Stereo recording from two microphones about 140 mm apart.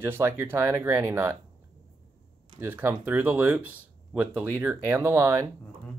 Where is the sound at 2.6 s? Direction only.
15° right (ahead or behind).